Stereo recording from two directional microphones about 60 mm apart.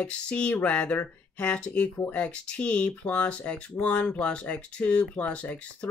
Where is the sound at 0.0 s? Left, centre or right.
Left.